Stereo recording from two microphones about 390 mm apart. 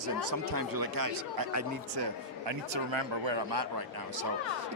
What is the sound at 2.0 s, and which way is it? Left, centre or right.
Speech, right.